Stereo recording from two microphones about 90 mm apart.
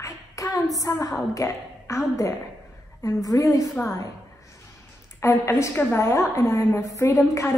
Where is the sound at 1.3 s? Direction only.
35° left (ahead or behind).